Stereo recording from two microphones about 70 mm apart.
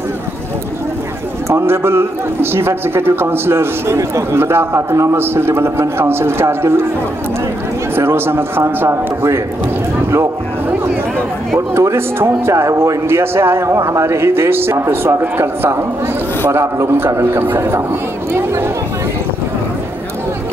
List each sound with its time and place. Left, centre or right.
1.5 s a man's voice: right
7.9 s a man's voice: right
11.7 s a man's voice: right